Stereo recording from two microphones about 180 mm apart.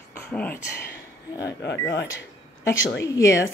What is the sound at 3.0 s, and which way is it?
Speech, 15° left (ahead or behind).